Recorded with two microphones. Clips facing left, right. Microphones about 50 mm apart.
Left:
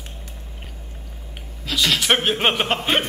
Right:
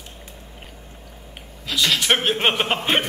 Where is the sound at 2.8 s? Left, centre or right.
Centre.